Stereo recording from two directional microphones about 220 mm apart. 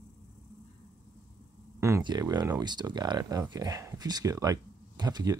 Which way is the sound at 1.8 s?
15° right (ahead or behind).